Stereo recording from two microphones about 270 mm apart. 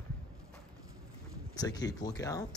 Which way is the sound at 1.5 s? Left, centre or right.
Centre.